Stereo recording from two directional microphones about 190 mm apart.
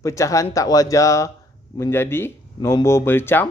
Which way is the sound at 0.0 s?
15° left (ahead or behind).